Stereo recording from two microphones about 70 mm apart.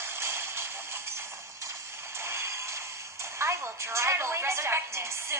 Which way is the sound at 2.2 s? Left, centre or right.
Right.